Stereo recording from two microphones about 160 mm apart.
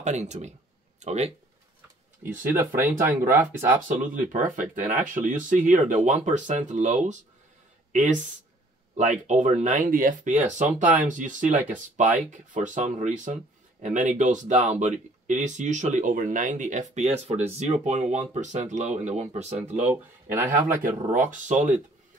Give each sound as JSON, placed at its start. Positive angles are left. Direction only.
{"t": 0.0, "sound": "speech", "side_deg": -45}
{"t": 2.5, "sound": "speech", "side_deg": -15}
{"t": 3.9, "sound": "speech", "side_deg": -55}
{"t": 10.8, "sound": "speech", "side_deg": -10}
{"t": 11.1, "sound": "speech", "side_deg": -55}
{"t": 19.9, "sound": "speech", "side_deg": -15}
{"t": 20.8, "sound": "speech", "side_deg": -55}